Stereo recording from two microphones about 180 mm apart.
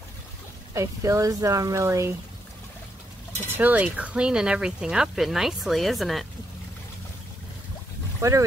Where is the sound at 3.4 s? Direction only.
10° right (ahead or behind).